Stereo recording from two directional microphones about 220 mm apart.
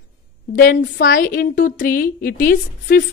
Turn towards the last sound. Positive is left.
turn(degrees=40)  # may be behind; listen again after turning